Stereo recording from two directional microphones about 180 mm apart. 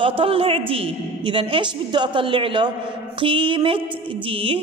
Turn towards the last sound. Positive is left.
turn(degrees=-30)  # may be behind; listen again after turning